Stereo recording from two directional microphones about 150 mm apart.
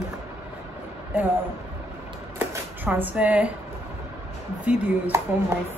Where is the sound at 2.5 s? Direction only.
10° right (ahead or behind).